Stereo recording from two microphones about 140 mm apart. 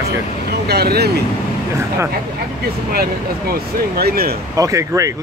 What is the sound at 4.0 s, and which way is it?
Speech, 90° right.